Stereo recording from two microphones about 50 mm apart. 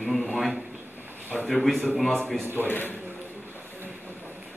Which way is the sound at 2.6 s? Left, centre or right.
Left.